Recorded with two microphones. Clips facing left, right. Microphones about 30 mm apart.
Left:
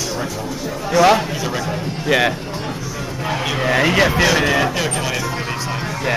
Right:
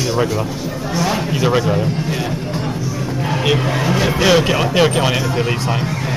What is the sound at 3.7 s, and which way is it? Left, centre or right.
Speech, left.